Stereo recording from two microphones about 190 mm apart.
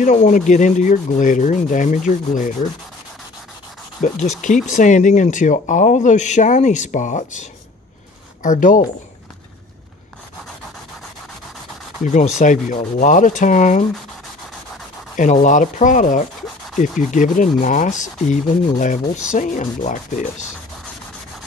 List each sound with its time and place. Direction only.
0.0 s speech: 40° left (ahead or behind)
4.0 s speech: 40° left (ahead or behind)
12.4 s rub: 40° left (ahead or behind)
15.1 s rub: 40° left (ahead or behind)